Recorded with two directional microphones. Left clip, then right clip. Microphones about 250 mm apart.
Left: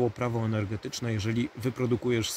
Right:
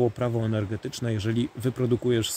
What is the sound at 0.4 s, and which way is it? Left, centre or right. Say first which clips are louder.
Speech: right 3 dB; centre.